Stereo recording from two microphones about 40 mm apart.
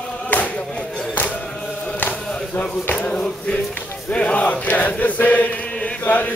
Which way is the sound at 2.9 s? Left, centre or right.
Left.